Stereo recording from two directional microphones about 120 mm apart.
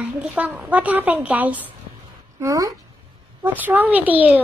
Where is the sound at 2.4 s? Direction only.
30° right (ahead or behind).